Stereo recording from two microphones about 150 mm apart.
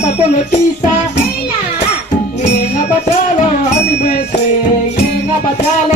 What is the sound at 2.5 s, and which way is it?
Music, 50° left (ahead or behind).